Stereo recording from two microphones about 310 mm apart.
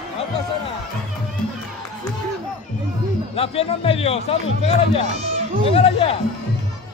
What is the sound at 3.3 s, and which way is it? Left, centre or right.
Speech, centre.